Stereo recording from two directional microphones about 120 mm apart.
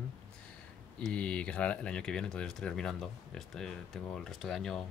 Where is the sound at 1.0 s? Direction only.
10° left (ahead or behind).